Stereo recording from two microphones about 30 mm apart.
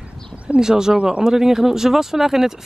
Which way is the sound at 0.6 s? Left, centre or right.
Centre.